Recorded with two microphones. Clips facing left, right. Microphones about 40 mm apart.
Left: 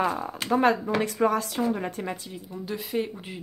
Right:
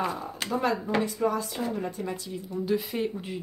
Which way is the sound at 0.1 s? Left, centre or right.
Left.